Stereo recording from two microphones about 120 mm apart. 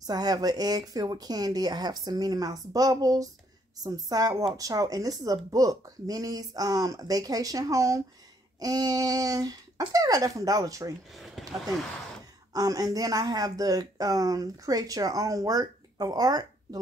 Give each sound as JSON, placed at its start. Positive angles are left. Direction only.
{"t": 0.0, "sound": "speech", "side_deg": -35}
{"t": 11.1, "sound": "a sound", "side_deg": 0}
{"t": 12.5, "sound": "speech", "side_deg": -30}